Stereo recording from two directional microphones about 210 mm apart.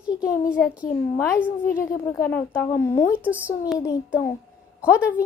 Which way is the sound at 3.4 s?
5° right (ahead or behind).